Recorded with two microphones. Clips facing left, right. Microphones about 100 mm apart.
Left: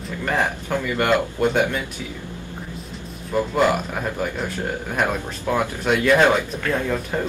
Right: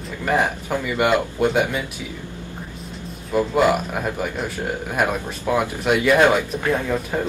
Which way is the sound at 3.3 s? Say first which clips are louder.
Right 2 dB; 5° right (ahead or behind).